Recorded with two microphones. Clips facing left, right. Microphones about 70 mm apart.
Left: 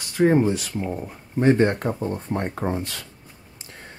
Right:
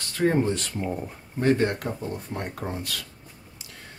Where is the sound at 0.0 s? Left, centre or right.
Centre.